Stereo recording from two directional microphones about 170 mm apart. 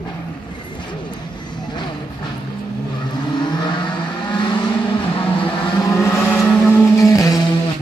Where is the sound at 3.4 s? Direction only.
25° left (ahead or behind).